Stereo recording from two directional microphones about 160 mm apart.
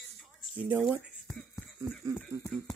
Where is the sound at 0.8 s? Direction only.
Centre (ahead or behind).